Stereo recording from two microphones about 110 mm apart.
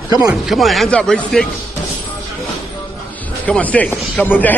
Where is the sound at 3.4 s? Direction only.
15° left (ahead or behind).